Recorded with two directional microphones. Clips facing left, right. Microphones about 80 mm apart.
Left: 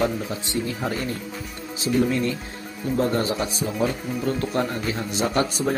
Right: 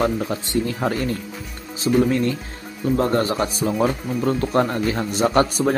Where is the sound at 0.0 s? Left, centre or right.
Right.